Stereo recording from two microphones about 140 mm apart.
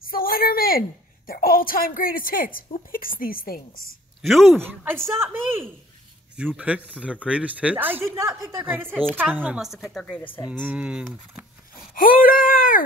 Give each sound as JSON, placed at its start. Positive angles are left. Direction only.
{"t": 0.0, "sound": "a woman's voice", "side_deg": 90}
{"t": 4.2, "sound": "speech", "side_deg": 0}
{"t": 4.6, "sound": "a woman's voice", "side_deg": -15}
{"t": 10.6, "sound": "a woman's voice", "side_deg": -10}
{"t": 11.9, "sound": "speech", "side_deg": 90}